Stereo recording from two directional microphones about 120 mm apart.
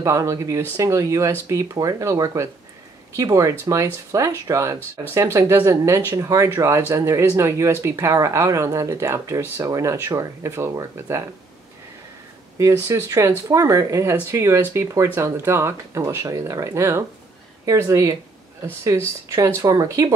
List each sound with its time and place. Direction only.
0.0 s speech: 25° right (ahead or behind)
12.5 s speech: 25° right (ahead or behind)